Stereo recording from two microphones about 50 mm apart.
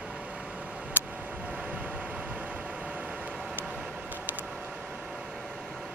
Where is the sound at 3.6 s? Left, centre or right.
Centre.